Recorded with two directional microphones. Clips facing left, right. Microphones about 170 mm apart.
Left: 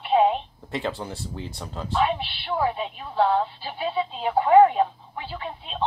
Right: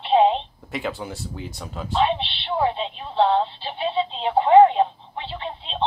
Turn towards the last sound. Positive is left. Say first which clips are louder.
# right 2 dB
turn(degrees=-25)  # may be behind; listen again after turning